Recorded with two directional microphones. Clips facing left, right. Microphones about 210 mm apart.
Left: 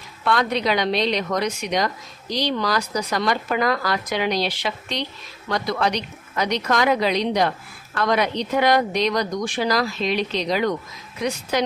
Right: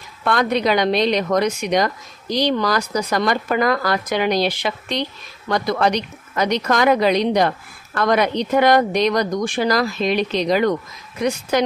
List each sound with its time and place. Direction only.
0.2 s a woman's voice: 50° right (ahead or behind)